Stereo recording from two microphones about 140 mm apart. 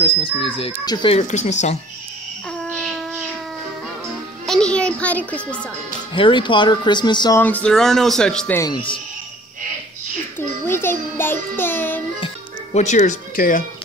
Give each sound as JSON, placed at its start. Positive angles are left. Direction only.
{"t": 0.0, "sound": "speech", "side_deg": 40}
{"t": 1.2, "sound": "speech", "side_deg": 55}
{"t": 2.6, "sound": "a sound", "side_deg": 0}
{"t": 4.5, "sound": "a child's voice", "side_deg": 5}
{"t": 6.1, "sound": "speech", "side_deg": 35}
{"t": 7.3, "sound": "speech", "side_deg": 10}
{"t": 8.5, "sound": "speech", "side_deg": 30}
{"t": 10.7, "sound": "music", "side_deg": 15}
{"t": 12.7, "sound": "speech", "side_deg": 60}